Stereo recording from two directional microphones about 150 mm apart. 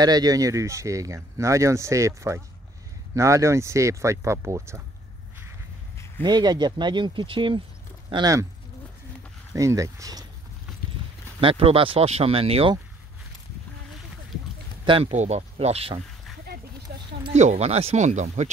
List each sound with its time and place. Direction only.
0.0 s speech: 25° right (ahead or behind)
6.2 s speech: 30° right (ahead or behind)
9.5 s speech: 20° right (ahead or behind)
11.4 s speech: 40° right (ahead or behind)
14.9 s speech: 40° right (ahead or behind)
16.9 s a sound: 90° right
17.3 s speech: 50° right (ahead or behind)